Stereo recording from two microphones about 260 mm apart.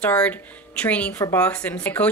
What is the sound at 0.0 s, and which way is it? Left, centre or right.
A woman's voice, centre.